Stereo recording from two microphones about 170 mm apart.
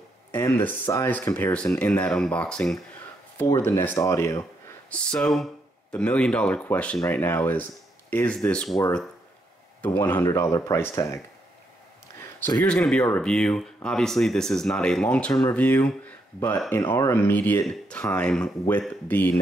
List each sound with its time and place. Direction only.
0.3 s speech: 15° left (ahead or behind)
3.3 s speech: 15° left (ahead or behind)
4.9 s speech: 5° left (ahead or behind)
9.8 s speech: 10° left (ahead or behind)
12.4 s speech: 10° left (ahead or behind)